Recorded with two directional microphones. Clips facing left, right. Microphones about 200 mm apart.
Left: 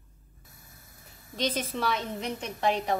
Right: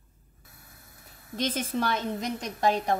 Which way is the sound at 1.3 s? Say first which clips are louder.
Right 1 dB; 50° right (ahead or behind).